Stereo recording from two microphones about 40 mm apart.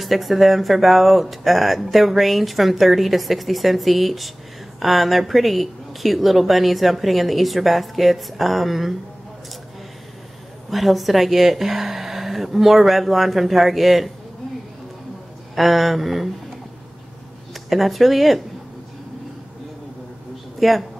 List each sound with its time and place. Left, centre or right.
0.0 s speech: centre
10.7 s speech: centre
15.5 s speech: centre
17.6 s speech: centre
20.6 s speech: centre